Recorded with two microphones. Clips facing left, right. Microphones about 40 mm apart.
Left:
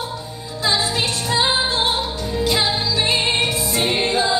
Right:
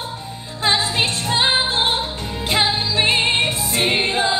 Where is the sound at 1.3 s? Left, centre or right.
Right.